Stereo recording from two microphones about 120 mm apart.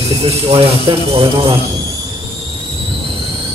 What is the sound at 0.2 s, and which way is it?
Speech, 55° right (ahead or behind).